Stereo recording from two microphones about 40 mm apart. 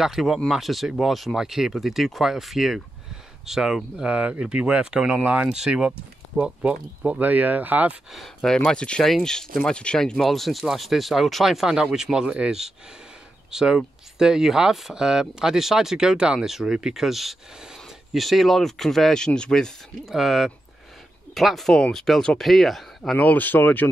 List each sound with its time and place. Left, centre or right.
0.0 s speech: centre
1.3 s speech: centre
4.0 s speech: right
5.2 s speech: right
7.2 s speech: right
8.4 s speech: centre
9.7 s speech: left
9.9 s speech: centre
11.4 s speech: centre
16.3 s speech: centre
19.1 s speech: centre
20.1 s speech: centre
23.1 s speech: left